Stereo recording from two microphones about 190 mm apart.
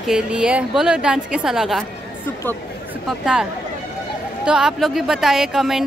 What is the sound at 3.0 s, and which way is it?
Speech, 5° right (ahead or behind).